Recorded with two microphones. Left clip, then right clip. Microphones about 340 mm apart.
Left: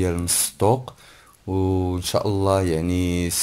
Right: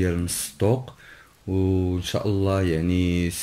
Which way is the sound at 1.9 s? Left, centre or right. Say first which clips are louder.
Left 3 dB; centre.